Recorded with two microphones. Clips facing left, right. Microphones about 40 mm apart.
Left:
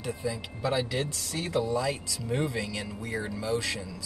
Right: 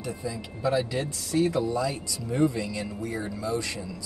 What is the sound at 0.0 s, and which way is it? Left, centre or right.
Speech, left.